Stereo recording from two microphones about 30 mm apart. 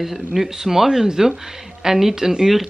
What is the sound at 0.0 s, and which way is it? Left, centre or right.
Speech, centre.